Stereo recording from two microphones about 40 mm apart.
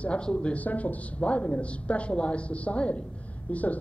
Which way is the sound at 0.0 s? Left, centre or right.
Left.